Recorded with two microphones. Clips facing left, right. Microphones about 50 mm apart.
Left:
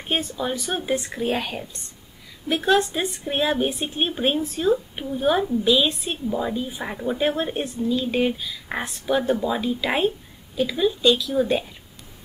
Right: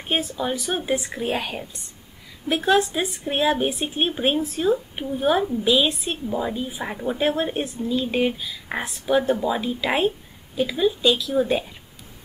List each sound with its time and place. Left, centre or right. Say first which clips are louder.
0.1 s a woman's voice: right 1 dB; centre